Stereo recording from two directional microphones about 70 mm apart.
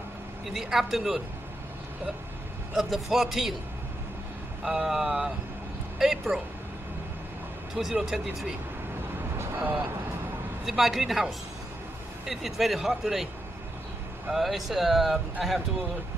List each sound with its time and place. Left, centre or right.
0.5 s a man's voice: centre
2.7 s a man's voice: centre
4.6 s a man's voice: centre
7.7 s speech: centre
9.6 s speech: right
10.6 s a man's voice: centre
14.3 s a man's voice: centre